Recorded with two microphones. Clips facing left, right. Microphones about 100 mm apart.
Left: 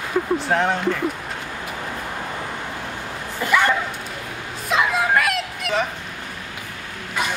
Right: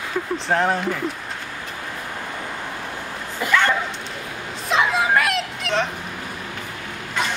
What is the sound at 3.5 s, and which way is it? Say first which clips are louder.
Bow-wow: left 1 dB; 10° left (ahead or behind).